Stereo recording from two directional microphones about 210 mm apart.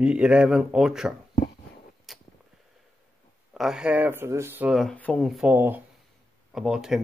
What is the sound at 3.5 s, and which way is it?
Speech, 5° right (ahead or behind).